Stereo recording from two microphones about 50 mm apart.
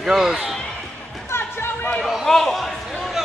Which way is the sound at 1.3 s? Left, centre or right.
Left.